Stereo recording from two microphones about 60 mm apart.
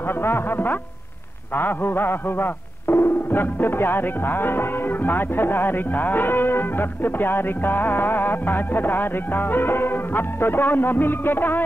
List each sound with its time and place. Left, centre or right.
0.0 s speech: left